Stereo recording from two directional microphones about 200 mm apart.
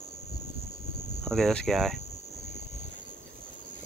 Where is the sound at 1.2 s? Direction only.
Centre (ahead or behind).